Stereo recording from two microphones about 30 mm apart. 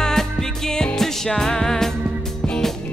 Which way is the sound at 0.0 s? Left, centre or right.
Centre.